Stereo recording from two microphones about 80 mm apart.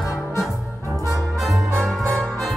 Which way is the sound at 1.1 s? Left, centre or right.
Centre.